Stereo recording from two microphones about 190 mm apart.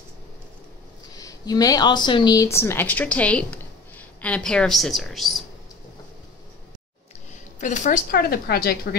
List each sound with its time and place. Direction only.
1.1 s speech: 20° left (ahead or behind); by 5.4 s centre (ahead or behind)
7.6 s speech: 40° left (ahead or behind)